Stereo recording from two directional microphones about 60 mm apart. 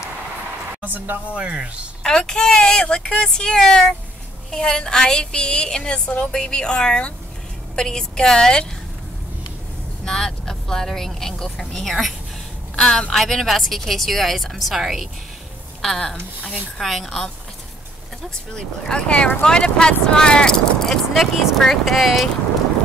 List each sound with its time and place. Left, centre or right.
0.8 s speech: right
1.3 s speech: centre
2.0 s a woman's voice: centre
10.0 s speech: centre
12.7 s a woman's voice: centre
13.1 s speech: centre
15.8 s a woman's voice: centre
18.9 s a woman's voice: centre